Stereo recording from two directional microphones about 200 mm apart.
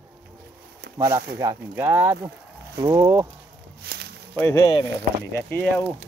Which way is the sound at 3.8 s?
55° right (ahead or behind).